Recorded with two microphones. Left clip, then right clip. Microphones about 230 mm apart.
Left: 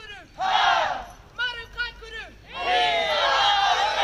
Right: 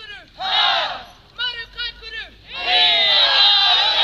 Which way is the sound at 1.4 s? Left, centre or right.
Centre.